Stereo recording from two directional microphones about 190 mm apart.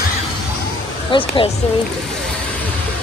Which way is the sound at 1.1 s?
25° left (ahead or behind).